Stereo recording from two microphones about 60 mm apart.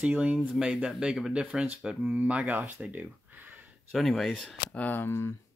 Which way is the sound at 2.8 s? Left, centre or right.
Right.